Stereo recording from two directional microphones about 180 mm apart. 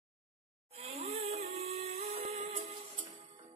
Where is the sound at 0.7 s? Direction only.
35° right (ahead or behind).